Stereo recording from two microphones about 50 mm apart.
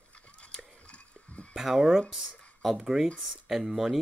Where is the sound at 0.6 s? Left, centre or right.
Left.